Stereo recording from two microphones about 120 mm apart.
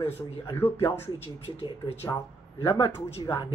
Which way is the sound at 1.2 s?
55° left (ahead or behind).